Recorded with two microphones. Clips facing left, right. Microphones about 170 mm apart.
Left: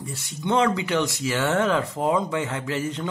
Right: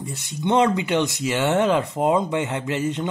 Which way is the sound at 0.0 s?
20° right (ahead or behind).